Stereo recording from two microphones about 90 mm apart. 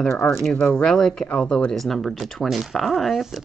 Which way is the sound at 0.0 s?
5° left (ahead or behind).